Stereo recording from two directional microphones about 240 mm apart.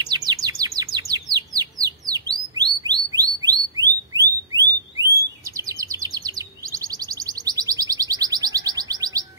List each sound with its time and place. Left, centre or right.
0.1 s chirp: centre